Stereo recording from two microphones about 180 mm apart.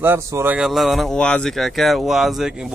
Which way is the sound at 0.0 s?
15° right (ahead or behind).